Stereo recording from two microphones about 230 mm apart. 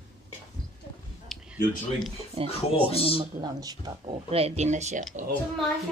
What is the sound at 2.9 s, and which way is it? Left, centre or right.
Speech, left.